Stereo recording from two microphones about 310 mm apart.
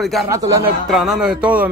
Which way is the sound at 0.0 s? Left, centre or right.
Centre.